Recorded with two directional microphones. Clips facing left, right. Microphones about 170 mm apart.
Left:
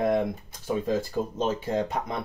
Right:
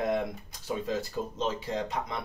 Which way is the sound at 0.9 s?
50° left (ahead or behind).